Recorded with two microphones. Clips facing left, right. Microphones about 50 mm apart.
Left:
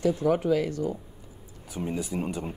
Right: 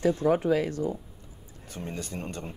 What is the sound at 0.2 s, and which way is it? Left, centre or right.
Speech, right.